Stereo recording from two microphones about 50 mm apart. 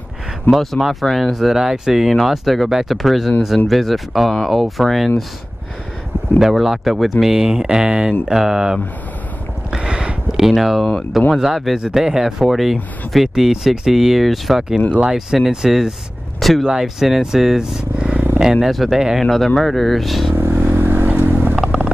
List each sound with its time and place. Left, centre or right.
0.6 s speech: centre
6.4 s speech: centre
9.7 s a sound: centre
11.3 s speech: centre
16.3 s a sound: centre
16.6 s speech: centre
20.3 s vehicle: right
21.5 s vehicle: centre